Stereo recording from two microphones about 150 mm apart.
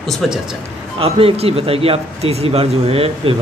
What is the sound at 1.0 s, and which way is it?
A man's voice, 40° right (ahead or behind).